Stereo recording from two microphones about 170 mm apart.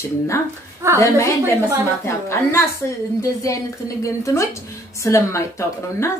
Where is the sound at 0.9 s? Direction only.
15° left (ahead or behind).